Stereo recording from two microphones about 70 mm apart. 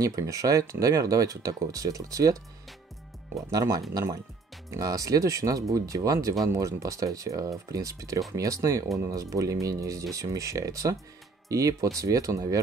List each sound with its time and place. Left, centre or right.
0.0 s speech: right
3.3 s speech: right